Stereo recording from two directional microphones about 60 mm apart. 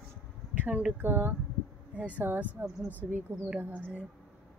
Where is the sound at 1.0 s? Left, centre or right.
Right.